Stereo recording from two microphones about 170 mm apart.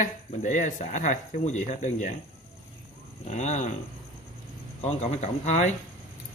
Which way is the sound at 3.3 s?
45° left (ahead or behind).